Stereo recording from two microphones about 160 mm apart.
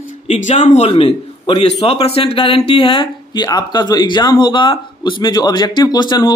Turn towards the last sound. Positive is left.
turn(degrees=30)  # may be behind; listen again after turning